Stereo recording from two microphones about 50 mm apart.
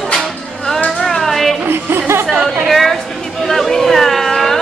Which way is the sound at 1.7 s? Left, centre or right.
Right.